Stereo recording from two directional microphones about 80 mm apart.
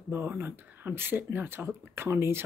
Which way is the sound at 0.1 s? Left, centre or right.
Right.